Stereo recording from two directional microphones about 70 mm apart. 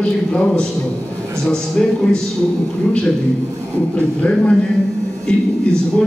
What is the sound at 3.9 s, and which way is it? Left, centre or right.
Speech, centre.